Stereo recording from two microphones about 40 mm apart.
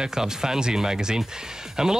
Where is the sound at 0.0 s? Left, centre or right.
Centre.